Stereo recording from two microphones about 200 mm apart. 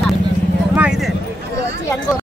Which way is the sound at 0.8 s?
Centre (ahead or behind).